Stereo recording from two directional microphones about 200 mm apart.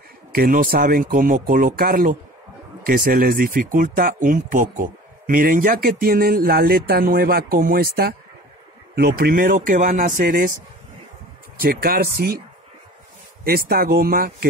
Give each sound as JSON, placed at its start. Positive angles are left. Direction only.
{"t": 0.3, "sound": "speech", "side_deg": -45}
{"t": 11.6, "sound": "speech", "side_deg": -50}
{"t": 13.4, "sound": "speech", "side_deg": -50}